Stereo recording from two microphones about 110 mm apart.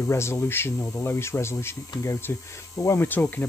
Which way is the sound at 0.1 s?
25° left (ahead or behind).